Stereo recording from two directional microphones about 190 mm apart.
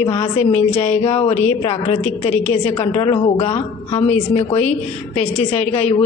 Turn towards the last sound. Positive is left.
turn(degrees=30)  # may be behind; listen again after turning